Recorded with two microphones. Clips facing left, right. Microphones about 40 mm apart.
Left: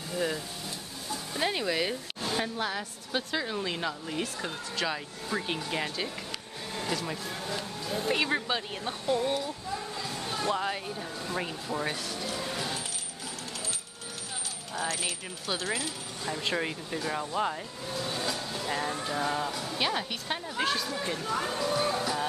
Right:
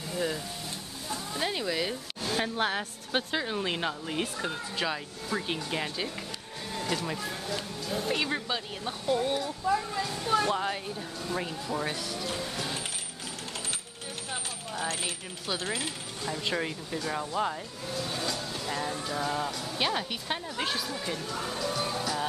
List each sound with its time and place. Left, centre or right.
0.1 s a sound: centre
1.3 s speech: centre
2.5 s a woman's voice: right
3.3 s speech: centre
4.4 s speech: centre
7.4 s speech: centre
10.5 s speech: centre
12.4 s a sound: centre
14.7 s speech: right
16.3 s speech: centre
21.3 s speech: left
21.5 s music: centre